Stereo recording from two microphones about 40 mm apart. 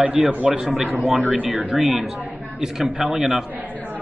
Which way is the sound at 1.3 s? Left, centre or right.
Right.